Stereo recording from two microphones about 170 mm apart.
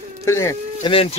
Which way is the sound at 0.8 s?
30° left (ahead or behind).